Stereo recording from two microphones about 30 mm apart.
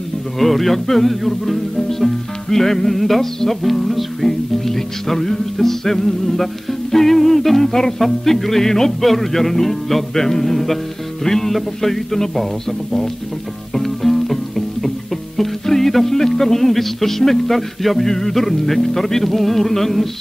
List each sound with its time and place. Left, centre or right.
0.4 s speech: centre
1.8 s music: centre
7.7 s speech: centre
10.5 s music: centre
11.2 s speech: centre
13.7 s music: centre
16.2 s speech: centre